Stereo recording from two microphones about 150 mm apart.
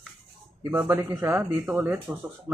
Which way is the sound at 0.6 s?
20° right (ahead or behind).